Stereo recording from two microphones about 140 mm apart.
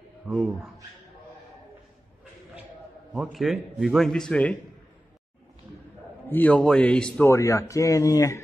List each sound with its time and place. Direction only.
0.3 s speech: centre (ahead or behind)
3.1 s a man's voice: centre (ahead or behind)
6.2 s a man's voice: 10° left (ahead or behind)
7.3 s speech: 20° left (ahead or behind)